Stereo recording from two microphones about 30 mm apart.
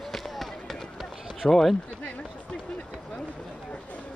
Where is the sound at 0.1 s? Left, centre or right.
Centre.